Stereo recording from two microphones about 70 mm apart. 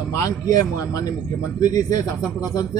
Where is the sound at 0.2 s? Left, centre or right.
Left.